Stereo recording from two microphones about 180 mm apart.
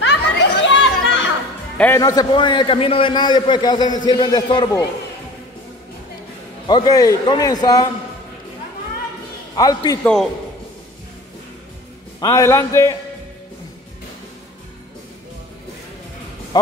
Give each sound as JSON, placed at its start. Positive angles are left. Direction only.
{"t": 0.0, "sound": "chatter", "side_deg": 75}
{"t": 2.0, "sound": "a man's voice", "side_deg": 20}
{"t": 6.7, "sound": "a man's voice", "side_deg": 20}
{"t": 9.6, "sound": "a man's voice", "side_deg": 20}
{"t": 12.2, "sound": "a man's voice", "side_deg": 20}